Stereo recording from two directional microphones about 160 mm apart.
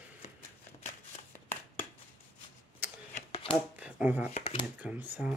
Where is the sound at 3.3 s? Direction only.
35° left (ahead or behind).